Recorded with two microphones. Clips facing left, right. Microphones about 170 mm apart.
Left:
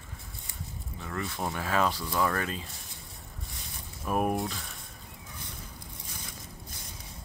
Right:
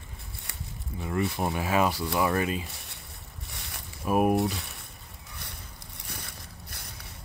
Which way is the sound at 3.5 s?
70° right (ahead or behind).